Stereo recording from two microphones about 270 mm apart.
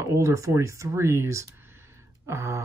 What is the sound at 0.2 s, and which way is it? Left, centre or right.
Speech, centre.